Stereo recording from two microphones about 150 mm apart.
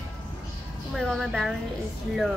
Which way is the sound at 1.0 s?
Centre (ahead or behind).